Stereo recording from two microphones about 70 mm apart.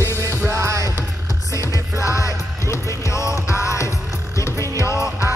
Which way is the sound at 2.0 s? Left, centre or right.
Left.